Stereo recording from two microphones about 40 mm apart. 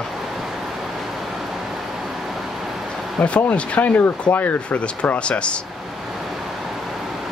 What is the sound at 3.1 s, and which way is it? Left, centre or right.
Speech, left.